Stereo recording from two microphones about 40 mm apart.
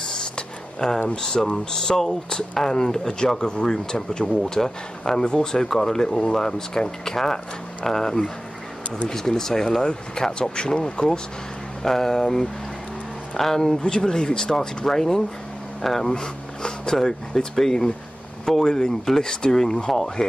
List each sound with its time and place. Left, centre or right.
0.0 s a sound: centre
1.1 s speech: centre
4.4 s speech: centre
16.1 s speech: centre
20.2 s sanding: centre